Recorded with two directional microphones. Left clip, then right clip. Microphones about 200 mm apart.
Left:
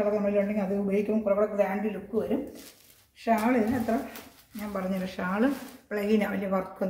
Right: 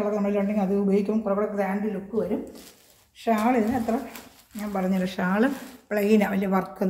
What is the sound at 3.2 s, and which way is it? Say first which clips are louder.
Speech: right 2 dB; 40° right (ahead or behind).